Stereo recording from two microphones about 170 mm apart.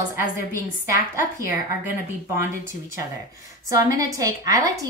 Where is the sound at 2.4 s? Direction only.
15° right (ahead or behind).